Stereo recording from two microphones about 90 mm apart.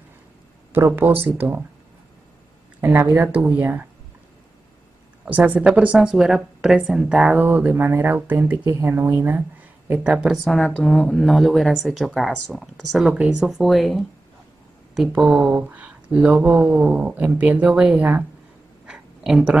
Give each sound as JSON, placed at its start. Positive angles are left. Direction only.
{"t": 0.7, "sound": "speech", "side_deg": -25}
{"t": 2.8, "sound": "speech", "side_deg": -25}
{"t": 5.3, "sound": "a woman's voice", "side_deg": -15}
{"t": 9.9, "sound": "speech", "side_deg": -10}
{"t": 10.5, "sound": "speech", "side_deg": 5}
{"t": 15.4, "sound": "speech", "side_deg": -15}
{"t": 18.9, "sound": "a sound", "side_deg": -5}